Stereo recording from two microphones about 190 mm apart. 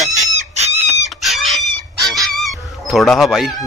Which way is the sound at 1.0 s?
Centre (ahead or behind).